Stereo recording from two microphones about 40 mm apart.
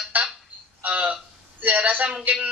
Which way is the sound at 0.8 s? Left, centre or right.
Right.